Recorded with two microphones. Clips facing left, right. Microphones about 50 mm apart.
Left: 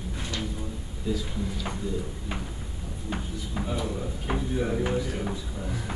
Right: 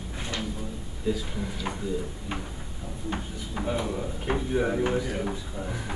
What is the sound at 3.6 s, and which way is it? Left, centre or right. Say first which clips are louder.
Speech: right 3 dB; centre.